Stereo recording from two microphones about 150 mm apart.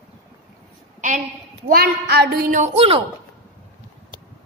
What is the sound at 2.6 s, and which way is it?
Speech, 40° right (ahead or behind).